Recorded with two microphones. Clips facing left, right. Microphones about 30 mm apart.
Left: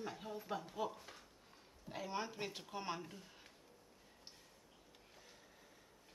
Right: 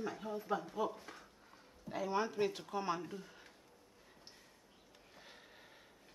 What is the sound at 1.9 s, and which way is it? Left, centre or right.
Speech, centre.